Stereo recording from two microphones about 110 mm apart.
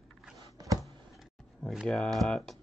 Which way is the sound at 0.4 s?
35° right (ahead or behind).